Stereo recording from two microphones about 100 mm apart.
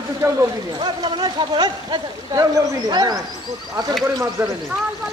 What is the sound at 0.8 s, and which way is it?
Speech, 50° right (ahead or behind).